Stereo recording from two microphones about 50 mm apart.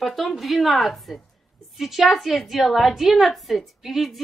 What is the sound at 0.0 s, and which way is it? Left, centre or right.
A woman's voice, centre.